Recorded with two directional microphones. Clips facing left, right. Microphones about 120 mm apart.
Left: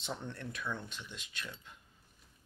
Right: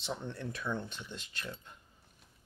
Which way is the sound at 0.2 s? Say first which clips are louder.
Right 2 dB; 15° right (ahead or behind).